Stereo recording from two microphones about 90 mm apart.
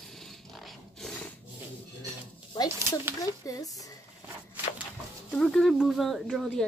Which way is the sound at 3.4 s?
40° left (ahead or behind).